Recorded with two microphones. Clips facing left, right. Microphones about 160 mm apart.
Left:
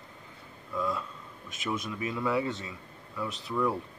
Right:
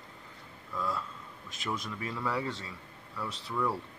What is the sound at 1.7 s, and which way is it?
Speech, 20° left (ahead or behind).